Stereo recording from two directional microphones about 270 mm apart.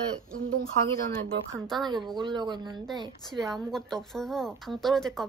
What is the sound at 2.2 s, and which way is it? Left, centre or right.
Speech, centre.